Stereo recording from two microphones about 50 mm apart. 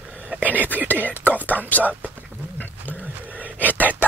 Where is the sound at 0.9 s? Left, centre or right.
Left.